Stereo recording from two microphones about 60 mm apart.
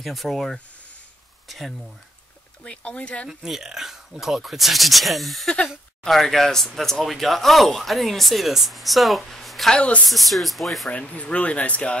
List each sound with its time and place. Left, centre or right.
0.0 s speech: centre
2.6 s speech: centre
3.3 s speech: centre
9.8 s speech: centre
10.0 s speech: centre
10.9 s speech: left